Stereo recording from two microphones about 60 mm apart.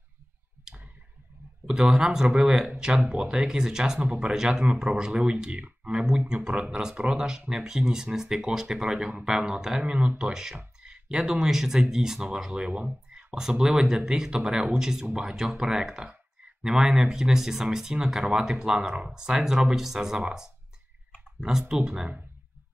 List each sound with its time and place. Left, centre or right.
1.7 s speech: centre
9.9 s speech: centre